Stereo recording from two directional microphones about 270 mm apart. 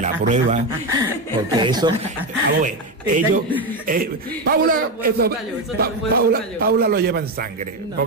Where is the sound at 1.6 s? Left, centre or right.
Centre.